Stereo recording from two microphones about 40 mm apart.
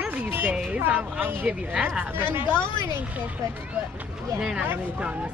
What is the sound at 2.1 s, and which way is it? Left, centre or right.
Speech, right.